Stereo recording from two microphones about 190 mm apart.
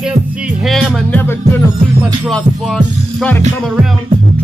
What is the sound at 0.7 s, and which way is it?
Music, centre (ahead or behind).